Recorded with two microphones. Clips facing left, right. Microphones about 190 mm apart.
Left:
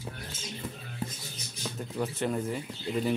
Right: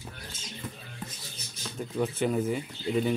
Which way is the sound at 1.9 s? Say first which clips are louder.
Right 4 dB; centre (ahead or behind).